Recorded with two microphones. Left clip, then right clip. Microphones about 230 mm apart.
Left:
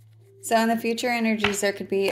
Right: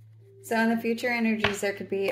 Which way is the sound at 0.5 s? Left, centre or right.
Left.